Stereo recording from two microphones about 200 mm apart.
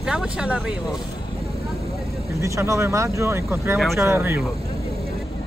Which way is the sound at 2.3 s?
15° right (ahead or behind).